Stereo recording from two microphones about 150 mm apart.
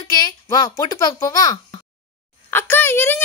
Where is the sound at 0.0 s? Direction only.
25° left (ahead or behind).